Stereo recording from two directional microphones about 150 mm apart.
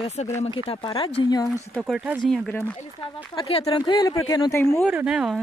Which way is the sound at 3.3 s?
35° left (ahead or behind).